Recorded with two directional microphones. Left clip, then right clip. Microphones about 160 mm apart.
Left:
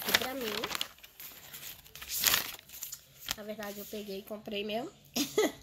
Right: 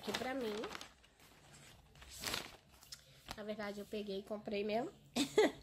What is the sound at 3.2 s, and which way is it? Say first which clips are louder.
Speech: left 5 dB; 15° right (ahead or behind).